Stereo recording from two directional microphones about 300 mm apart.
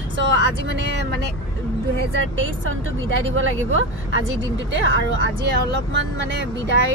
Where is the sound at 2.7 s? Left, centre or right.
Right.